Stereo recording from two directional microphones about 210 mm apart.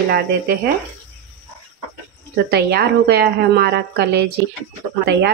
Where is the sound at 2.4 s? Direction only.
50° right (ahead or behind).